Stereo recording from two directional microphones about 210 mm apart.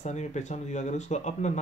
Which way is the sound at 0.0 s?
35° left (ahead or behind).